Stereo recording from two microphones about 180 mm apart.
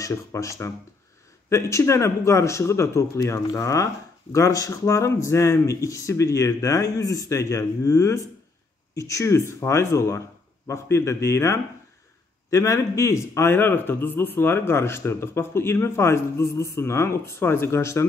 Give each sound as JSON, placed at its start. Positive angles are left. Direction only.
{"t": 0.0, "sound": "speech", "side_deg": 15}